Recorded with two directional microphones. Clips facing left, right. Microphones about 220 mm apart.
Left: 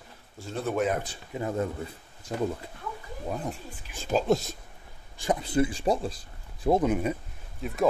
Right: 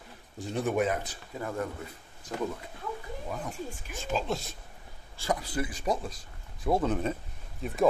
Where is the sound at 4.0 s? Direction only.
40° left (ahead or behind).